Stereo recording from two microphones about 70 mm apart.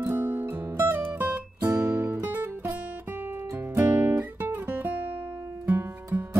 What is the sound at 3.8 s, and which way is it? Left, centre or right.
Music, right.